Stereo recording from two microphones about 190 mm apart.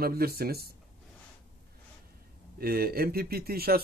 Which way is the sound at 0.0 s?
55° right (ahead or behind).